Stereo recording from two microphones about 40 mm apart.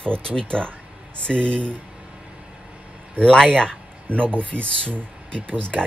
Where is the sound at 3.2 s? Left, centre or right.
Centre.